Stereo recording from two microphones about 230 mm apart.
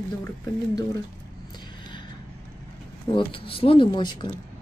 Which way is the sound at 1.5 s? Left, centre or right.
Centre.